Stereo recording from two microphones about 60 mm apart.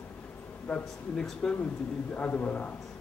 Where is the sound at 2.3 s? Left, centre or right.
Left.